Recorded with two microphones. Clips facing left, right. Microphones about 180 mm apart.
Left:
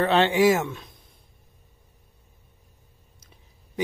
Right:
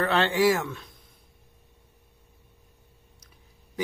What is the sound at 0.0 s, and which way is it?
Speech, 20° left (ahead or behind).